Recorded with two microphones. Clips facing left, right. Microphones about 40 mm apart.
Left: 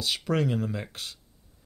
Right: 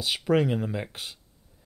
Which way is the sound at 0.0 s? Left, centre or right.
Centre.